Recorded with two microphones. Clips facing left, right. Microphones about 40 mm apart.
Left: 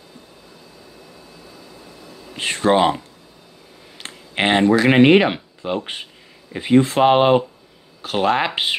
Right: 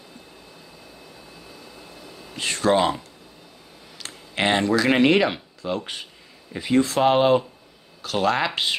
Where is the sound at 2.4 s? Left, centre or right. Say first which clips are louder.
Left 4 dB; left.